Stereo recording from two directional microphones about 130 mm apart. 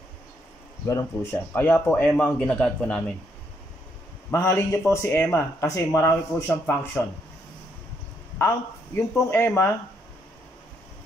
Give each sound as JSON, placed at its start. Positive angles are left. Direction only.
{"t": 0.8, "sound": "speech", "side_deg": 25}
{"t": 1.6, "sound": "a man's voice", "side_deg": 10}
{"t": 4.3, "sound": "a man's voice", "side_deg": 20}
{"t": 8.4, "sound": "speech", "side_deg": 20}